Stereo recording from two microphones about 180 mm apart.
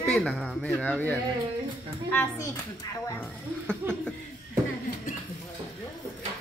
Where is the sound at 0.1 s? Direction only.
Centre (ahead or behind); by 2.5 s 15° left (ahead or behind).